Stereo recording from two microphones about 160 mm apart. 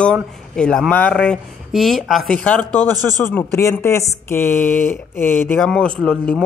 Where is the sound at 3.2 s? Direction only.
10° left (ahead or behind).